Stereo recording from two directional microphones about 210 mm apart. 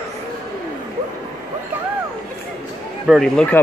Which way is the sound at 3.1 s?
Centre (ahead or behind).